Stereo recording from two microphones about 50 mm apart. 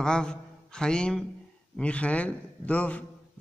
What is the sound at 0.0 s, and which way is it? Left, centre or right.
A man's voice, centre.